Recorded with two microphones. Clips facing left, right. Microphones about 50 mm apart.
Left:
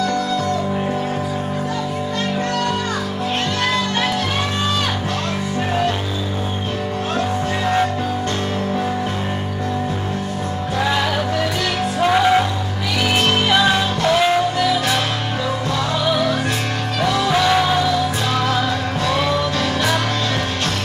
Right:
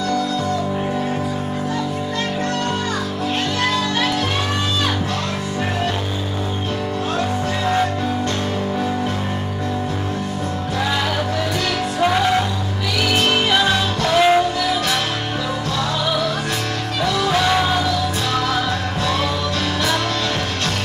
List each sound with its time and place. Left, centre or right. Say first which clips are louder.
7.2 s music: left 3 dB; centre
12.1 s music: left 5 dB; centre
13.5 s music: left 1 dB; centre
14.1 s music: right 3 dB; centre
17.0 s music: left 1 dB; left
17.3 s music: left 1 dB; centre